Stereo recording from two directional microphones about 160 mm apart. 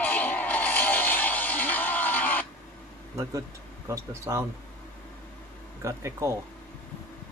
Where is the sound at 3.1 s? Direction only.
20° right (ahead or behind).